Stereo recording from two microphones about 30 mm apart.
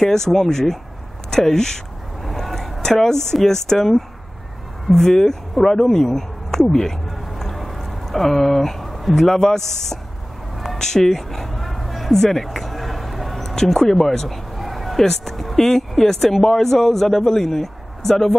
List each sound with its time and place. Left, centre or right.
0.1 s speech: centre
2.2 s vehicle: centre
2.8 s speech: centre
5.0 s speech: centre
7.1 s a sound: centre
9.4 s speech: centre
10.8 s a sound: centre
13.9 s speech: centre
14.6 s a sound: centre
15.5 s a man's voice: centre